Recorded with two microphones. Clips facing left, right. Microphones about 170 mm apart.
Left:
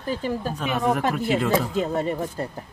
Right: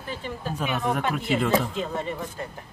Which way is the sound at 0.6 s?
Centre (ahead or behind).